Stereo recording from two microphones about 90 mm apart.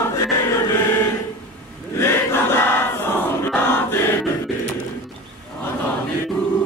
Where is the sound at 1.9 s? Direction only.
30° left (ahead or behind).